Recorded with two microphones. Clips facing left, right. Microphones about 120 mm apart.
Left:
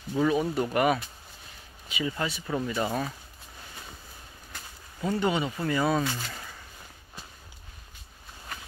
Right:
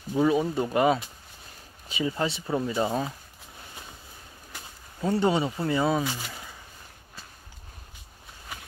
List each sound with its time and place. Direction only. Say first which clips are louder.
0.1 s speech: right 2 dB; 20° right (ahead or behind)
5.0 s speech: right 3 dB; 30° right (ahead or behind)
6.0 s speech: even; 10° right (ahead or behind)